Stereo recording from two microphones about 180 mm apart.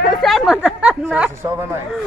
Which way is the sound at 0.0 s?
Centre (ahead or behind).